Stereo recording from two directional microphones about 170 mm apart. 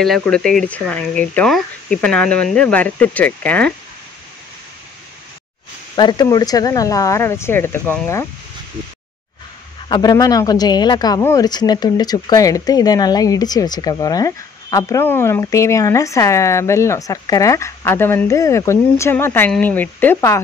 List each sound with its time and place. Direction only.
0.0 s speech: 5° left (ahead or behind)
5.9 s speech: 25° left (ahead or behind)
9.8 s speech: 25° left (ahead or behind)